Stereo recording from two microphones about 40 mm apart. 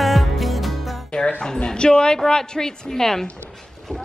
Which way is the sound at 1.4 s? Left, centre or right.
Centre.